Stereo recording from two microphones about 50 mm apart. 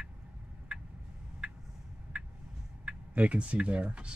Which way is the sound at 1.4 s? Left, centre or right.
Centre.